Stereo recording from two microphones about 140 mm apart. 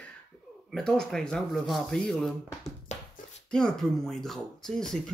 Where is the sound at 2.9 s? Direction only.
55° left (ahead or behind).